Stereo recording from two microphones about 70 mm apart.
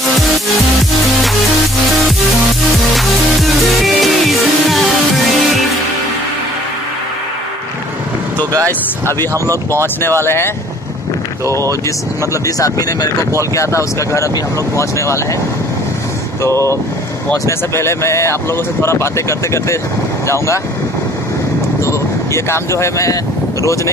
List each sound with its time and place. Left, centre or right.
3.0 s music: centre
8.5 s speech: right
10.2 s speech: left
12.4 s speech: left
16.4 s speech: left
21.8 s speech: left